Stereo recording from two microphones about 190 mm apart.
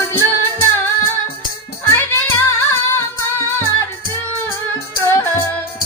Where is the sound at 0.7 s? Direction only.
10° left (ahead or behind).